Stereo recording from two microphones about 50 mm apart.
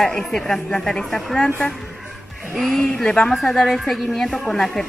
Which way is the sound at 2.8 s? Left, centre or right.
Centre.